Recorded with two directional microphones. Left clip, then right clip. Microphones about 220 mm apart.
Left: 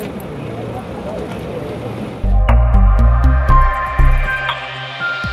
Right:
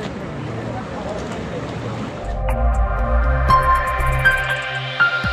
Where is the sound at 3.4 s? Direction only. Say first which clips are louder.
Right 1 dB; centre (ahead or behind).